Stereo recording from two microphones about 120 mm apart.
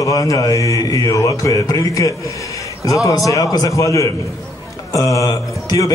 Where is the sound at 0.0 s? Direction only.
30° left (ahead or behind).